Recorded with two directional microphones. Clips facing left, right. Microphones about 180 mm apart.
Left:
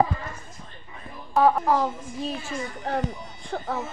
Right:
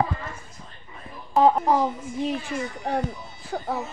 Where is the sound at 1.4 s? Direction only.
20° right (ahead or behind).